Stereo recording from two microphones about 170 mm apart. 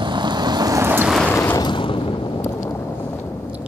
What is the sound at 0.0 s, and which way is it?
Vehicle, 25° right (ahead or behind).